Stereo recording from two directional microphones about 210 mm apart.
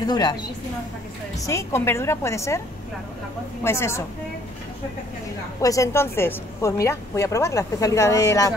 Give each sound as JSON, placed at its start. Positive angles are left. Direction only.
{"t": 0.0, "sound": "a woman's voice", "side_deg": 20}
{"t": 1.4, "sound": "a woman's voice", "side_deg": 15}
{"t": 3.6, "sound": "a woman's voice", "side_deg": 10}
{"t": 5.6, "sound": "a woman's voice", "side_deg": 15}